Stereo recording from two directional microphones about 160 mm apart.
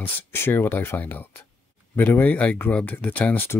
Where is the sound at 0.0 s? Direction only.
15° left (ahead or behind).